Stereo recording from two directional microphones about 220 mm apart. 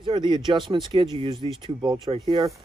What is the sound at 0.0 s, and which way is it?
Speech, 20° right (ahead or behind).